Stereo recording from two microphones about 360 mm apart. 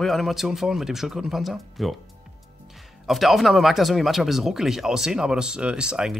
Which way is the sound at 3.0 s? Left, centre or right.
Centre.